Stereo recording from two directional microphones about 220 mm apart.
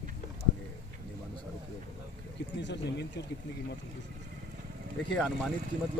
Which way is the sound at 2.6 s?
50° left (ahead or behind).